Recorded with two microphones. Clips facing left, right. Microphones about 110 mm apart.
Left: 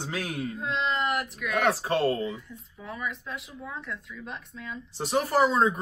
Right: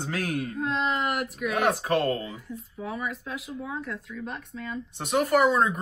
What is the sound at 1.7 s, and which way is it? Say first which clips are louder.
Speech: even; 30° left (ahead or behind).